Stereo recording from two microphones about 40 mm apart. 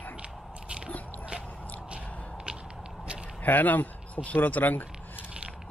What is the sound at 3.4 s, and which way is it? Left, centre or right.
A man's voice, left.